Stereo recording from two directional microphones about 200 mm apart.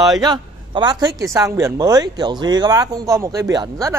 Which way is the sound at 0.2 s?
20° right (ahead or behind).